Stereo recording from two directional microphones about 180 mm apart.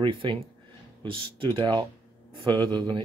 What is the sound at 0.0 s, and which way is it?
Speech, 30° right (ahead or behind).